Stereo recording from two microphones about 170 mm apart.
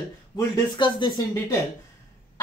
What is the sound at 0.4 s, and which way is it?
Speech, 25° left (ahead or behind).